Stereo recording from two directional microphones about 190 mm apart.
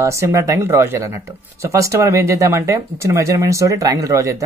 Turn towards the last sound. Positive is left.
turn(degrees=-15)  # may be behind; listen again after turning